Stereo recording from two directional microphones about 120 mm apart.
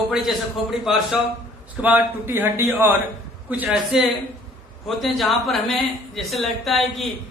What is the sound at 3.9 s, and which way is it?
A man's voice, 5° right (ahead or behind).